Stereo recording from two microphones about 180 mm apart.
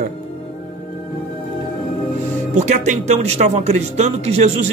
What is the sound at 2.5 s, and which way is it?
Speech, 40° right (ahead or behind).